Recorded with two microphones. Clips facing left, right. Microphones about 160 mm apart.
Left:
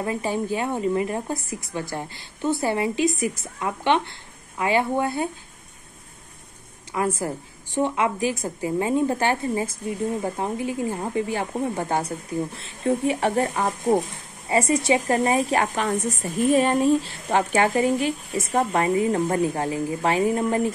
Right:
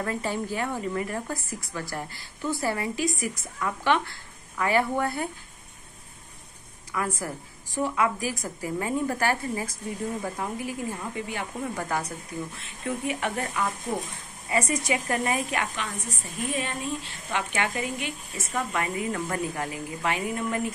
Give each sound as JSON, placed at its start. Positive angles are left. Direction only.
{"t": 0.0, "sound": "a woman's voice", "side_deg": 15}
{"t": 6.9, "sound": "a woman's voice", "side_deg": 25}
{"t": 13.7, "sound": "speech", "side_deg": 50}
{"t": 14.5, "sound": "speech", "side_deg": 30}